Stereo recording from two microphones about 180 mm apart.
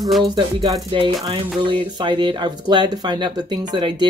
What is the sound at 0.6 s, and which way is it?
Speech, 25° right (ahead or behind).